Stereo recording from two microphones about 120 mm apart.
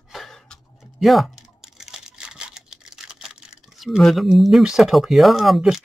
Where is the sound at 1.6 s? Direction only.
Centre (ahead or behind).